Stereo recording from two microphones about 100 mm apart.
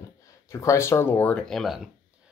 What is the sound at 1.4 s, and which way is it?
Speech, centre (ahead or behind).